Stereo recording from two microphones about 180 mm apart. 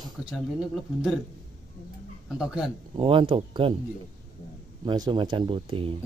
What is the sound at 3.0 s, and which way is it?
Speech, 30° right (ahead or behind).